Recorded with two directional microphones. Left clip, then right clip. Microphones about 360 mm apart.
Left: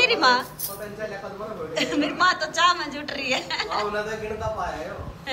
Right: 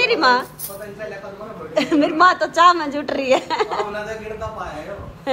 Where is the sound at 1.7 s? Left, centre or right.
Centre.